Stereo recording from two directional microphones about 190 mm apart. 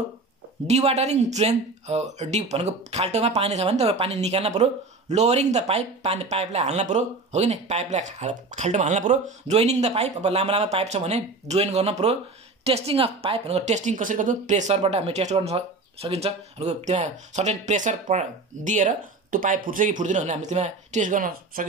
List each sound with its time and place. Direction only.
0.7 s speech: 35° right (ahead or behind)